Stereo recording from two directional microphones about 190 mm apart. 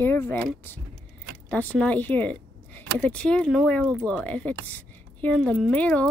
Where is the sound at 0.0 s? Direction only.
10° left (ahead or behind).